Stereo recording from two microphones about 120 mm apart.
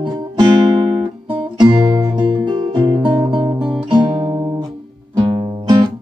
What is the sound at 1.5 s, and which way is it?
Guitar, 40° right (ahead or behind).